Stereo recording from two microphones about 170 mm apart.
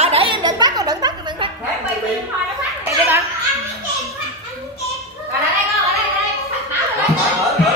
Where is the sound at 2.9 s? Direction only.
15° right (ahead or behind).